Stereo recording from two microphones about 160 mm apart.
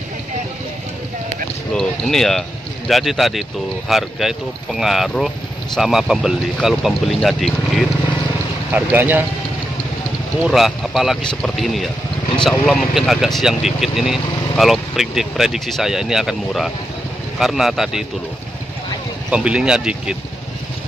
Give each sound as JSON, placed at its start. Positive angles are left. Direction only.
{"t": 1.7, "sound": "speech", "side_deg": 5}
{"t": 8.7, "sound": "speech", "side_deg": -10}
{"t": 10.4, "sound": "speech", "side_deg": 0}
{"t": 19.3, "sound": "speech", "side_deg": -5}